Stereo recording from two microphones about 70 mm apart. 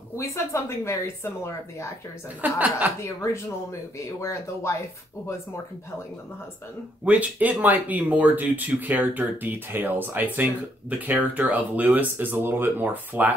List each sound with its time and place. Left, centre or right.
0.1 s speech: left
2.4 s speech: right
3.0 s speech: left
7.1 s speech: right